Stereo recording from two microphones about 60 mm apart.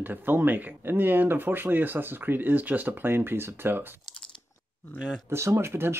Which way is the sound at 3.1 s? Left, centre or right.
Right.